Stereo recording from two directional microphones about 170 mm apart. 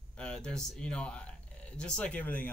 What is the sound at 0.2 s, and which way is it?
Speech, 5° left (ahead or behind).